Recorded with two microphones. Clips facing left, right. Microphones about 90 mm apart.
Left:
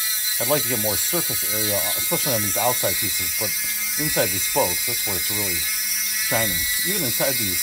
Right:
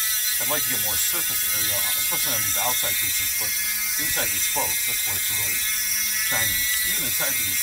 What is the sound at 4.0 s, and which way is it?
Speech, 10° left (ahead or behind).